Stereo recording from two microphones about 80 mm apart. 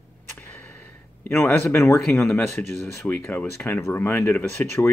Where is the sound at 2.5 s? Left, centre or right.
Centre.